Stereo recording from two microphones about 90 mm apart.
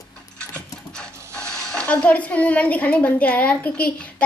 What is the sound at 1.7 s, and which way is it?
A woman's voice, 10° left (ahead or behind).